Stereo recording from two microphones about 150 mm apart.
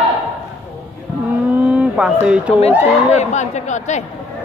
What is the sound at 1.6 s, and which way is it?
Vehicle, 5° right (ahead or behind).